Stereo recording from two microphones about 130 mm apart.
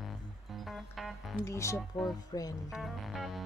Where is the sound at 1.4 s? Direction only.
20° left (ahead or behind).